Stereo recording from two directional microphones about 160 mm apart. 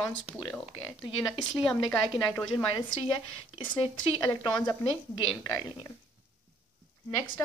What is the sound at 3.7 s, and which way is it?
Speech, 30° left (ahead or behind).